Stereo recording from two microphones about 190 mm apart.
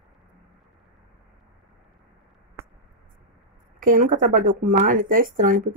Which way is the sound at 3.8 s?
45° right (ahead or behind).